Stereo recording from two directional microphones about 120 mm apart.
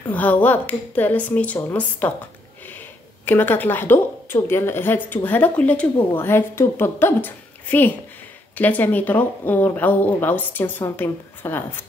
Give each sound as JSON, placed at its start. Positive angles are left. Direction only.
{"t": 0.1, "sound": "a woman's voice", "side_deg": 15}
{"t": 3.3, "sound": "a woman's voice", "side_deg": 15}